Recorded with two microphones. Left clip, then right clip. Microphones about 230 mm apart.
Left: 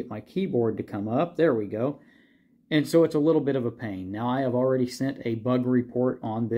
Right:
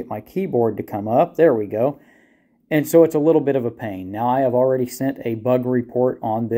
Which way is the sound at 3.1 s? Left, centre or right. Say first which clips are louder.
Right 6 dB; right.